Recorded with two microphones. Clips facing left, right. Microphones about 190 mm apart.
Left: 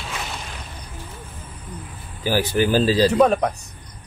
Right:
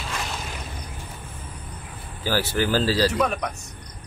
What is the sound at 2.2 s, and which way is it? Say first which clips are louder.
Speech: left 4 dB; 15° left (ahead or behind).